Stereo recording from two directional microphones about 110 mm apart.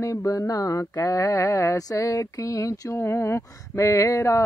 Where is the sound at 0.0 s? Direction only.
30° left (ahead or behind).